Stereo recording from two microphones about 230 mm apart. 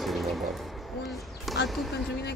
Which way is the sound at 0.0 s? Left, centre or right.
Centre.